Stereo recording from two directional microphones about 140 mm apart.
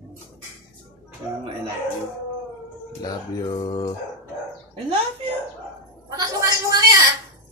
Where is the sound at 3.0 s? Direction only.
30° left (ahead or behind).